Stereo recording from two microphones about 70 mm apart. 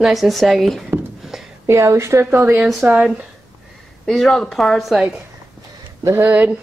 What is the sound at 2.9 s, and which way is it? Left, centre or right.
Speech, centre.